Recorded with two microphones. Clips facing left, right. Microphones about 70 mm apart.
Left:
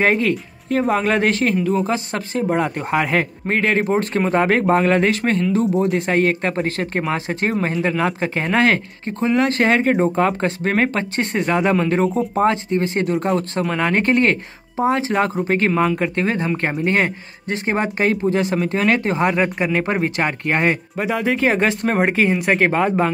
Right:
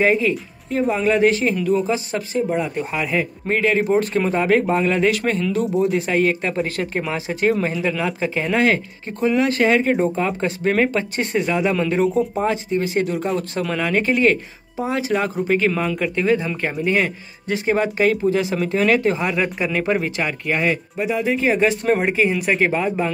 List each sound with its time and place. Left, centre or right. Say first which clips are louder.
0.0 s speech: even; left
1.9 s speech: even; left
3.1 s speech: right 1 dB; left
3.4 s speech: right 2 dB; left
5.4 s speech: left 2 dB; left
5.8 s speech: left 1 dB; left
14.8 s speech: left 3 dB; left
15.4 s speech: left 2 dB; left